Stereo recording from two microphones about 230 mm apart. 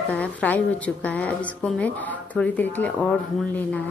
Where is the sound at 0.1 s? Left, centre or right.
Centre.